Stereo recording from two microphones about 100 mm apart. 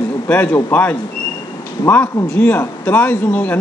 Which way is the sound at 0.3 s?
15° left (ahead or behind).